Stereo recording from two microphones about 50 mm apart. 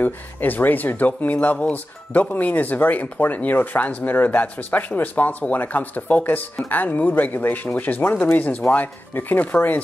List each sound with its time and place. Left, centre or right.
0.0 s speech: left